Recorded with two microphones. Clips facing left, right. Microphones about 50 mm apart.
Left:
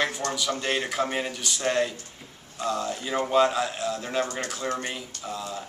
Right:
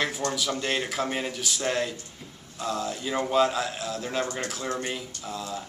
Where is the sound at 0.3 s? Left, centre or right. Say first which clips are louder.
Left 1 dB; centre.